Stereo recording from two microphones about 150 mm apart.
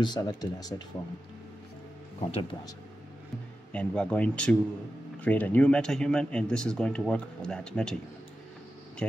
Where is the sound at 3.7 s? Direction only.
10° left (ahead or behind).